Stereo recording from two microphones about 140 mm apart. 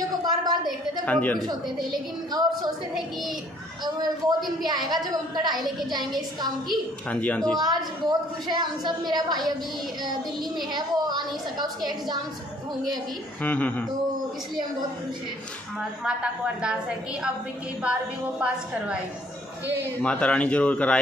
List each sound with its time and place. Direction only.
0.2 s a sound: 30° right (ahead or behind)
1.0 s speech: 10° left (ahead or behind)
1.4 s a woman's voice: 30° right (ahead or behind)
3.8 s a woman's voice: 30° right (ahead or behind)
6.7 s speech: 10° left (ahead or behind)
7.5 s a woman's voice: 30° right (ahead or behind)
10.7 s a woman's voice: 30° right (ahead or behind)
13.4 s speech: 10° left (ahead or behind)
16.0 s a woman's voice: 5° right (ahead or behind)
17.8 s a woman's voice: 10° right (ahead or behind)
20.0 s speech: 10° left (ahead or behind)